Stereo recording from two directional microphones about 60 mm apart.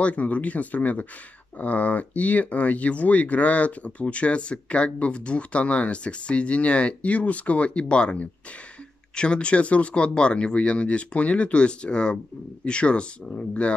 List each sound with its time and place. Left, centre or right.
0.0 s speech: left